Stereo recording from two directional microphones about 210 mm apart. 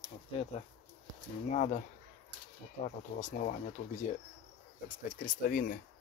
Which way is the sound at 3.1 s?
35° left (ahead or behind).